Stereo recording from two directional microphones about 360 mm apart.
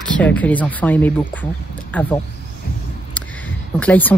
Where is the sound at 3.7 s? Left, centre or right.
Centre.